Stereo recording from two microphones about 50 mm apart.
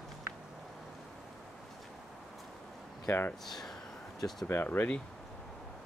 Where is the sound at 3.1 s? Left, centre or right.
Left.